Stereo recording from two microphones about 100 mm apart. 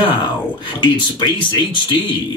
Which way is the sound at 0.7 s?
50° left (ahead or behind).